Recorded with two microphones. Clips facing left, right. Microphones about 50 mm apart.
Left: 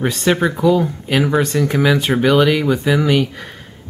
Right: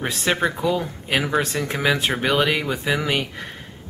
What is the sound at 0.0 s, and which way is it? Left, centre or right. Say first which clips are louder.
Speech: left 5 dB; centre.